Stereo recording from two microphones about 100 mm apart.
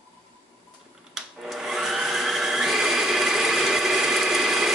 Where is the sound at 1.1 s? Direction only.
5° right (ahead or behind).